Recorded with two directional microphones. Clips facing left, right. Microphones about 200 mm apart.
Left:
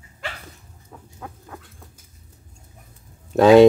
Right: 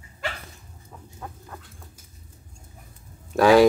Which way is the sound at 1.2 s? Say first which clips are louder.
Left 1 dB; 5° left (ahead or behind).